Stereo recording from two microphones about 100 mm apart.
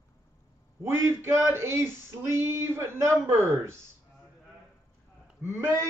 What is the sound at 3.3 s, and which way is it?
Speech, 30° right (ahead or behind).